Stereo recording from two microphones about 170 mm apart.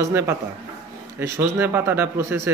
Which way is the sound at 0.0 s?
15° right (ahead or behind).